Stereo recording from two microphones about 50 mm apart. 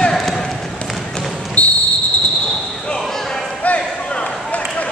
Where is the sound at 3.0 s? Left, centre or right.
Centre.